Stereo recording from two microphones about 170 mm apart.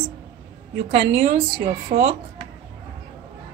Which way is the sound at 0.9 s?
35° right (ahead or behind).